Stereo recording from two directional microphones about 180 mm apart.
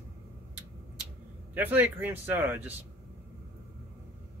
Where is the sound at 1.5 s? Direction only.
10° right (ahead or behind).